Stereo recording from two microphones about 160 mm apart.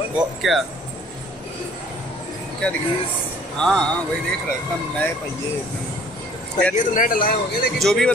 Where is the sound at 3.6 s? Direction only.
5° left (ahead or behind).